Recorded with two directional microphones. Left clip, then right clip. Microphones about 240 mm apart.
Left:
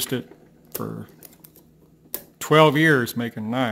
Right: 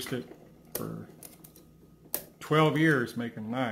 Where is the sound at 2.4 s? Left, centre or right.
Left.